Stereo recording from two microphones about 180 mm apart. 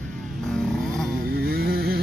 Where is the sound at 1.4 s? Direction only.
60° right (ahead or behind).